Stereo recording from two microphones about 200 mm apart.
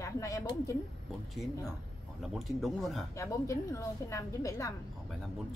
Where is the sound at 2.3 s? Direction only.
Centre (ahead or behind).